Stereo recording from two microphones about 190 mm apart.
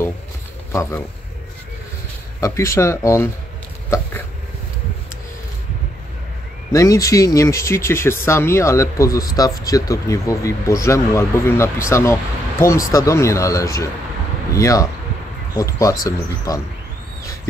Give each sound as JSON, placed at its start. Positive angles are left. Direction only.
{"t": 0.7, "sound": "a man's voice", "side_deg": 15}
{"t": 2.4, "sound": "speech", "side_deg": 15}
{"t": 3.9, "sound": "a sound", "side_deg": 15}
{"t": 6.7, "sound": "speech", "side_deg": 15}